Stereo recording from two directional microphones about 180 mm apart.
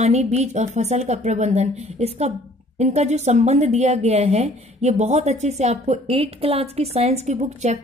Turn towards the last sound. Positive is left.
turn(degrees=-40)  # may be behind; listen again after turning